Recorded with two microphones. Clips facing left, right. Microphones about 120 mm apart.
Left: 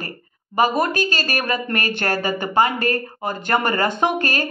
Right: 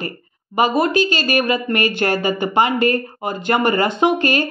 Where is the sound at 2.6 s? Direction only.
40° left (ahead or behind).